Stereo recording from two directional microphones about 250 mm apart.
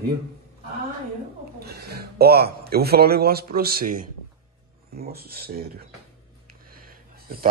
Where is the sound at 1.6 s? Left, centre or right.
Right.